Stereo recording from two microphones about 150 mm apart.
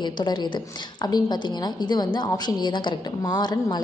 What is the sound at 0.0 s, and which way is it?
A woman's voice, 30° left (ahead or behind).